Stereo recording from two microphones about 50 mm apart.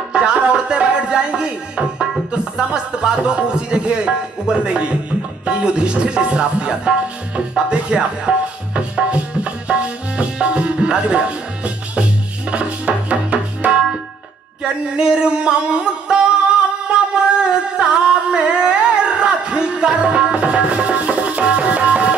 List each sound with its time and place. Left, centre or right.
0.1 s music: centre
2.5 s speech: centre
7.3 s music: centre
14.6 s a sound: centre